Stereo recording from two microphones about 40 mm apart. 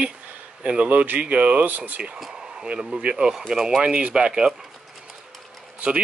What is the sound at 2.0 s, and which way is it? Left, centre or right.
Rub, right.